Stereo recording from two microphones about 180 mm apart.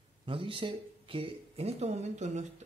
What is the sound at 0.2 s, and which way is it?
Speech, 30° right (ahead or behind).